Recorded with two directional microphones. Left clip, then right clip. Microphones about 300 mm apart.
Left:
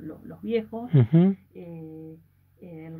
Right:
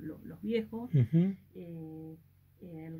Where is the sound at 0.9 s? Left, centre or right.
Centre.